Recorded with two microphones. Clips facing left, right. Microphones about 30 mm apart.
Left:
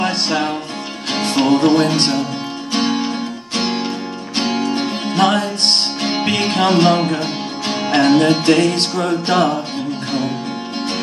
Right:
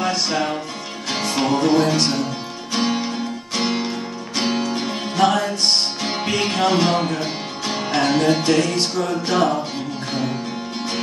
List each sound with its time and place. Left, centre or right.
1.1 s music: left
4.7 s music: left